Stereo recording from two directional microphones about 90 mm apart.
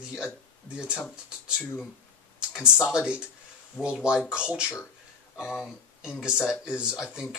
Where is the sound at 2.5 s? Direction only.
5° right (ahead or behind).